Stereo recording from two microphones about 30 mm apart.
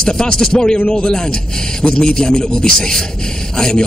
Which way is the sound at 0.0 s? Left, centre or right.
Left.